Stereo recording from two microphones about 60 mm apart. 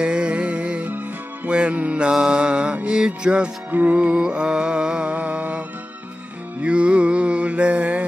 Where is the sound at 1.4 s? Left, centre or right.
Centre.